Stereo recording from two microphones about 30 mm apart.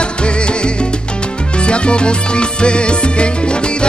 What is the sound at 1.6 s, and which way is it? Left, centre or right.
Music, left.